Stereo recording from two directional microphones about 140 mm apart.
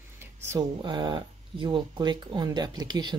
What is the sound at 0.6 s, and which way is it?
Speech, 30° right (ahead or behind).